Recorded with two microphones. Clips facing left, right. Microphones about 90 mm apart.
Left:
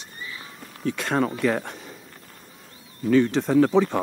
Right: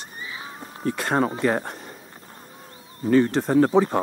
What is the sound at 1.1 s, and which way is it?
Speech, 25° right (ahead or behind).